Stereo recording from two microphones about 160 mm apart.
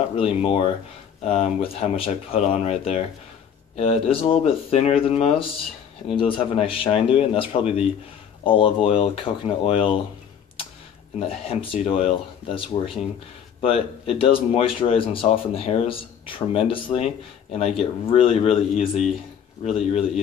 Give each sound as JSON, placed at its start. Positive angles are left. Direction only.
{"t": 0.1, "sound": "speech", "side_deg": 35}
{"t": 11.1, "sound": "speech", "side_deg": 35}